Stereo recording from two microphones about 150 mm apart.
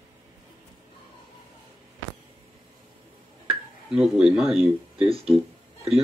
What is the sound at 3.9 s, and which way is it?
Speech, 5° right (ahead or behind).